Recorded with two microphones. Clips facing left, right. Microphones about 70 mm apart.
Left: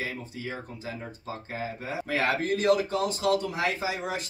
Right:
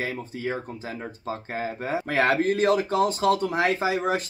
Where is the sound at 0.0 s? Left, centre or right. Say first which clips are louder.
Right 5 dB; right.